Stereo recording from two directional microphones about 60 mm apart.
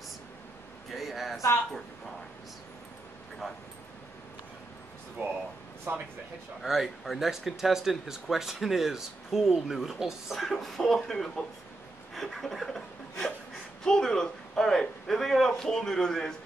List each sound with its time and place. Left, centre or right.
0.9 s a sound: centre
5.2 s speech: right
6.6 s speech: centre